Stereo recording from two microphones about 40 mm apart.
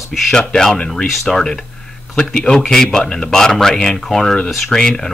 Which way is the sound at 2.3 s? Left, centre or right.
Centre.